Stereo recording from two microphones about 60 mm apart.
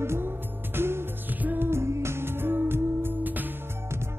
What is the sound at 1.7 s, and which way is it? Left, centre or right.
Music, right.